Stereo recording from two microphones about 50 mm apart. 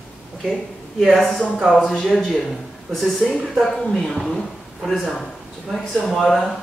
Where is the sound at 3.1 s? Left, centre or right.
Centre.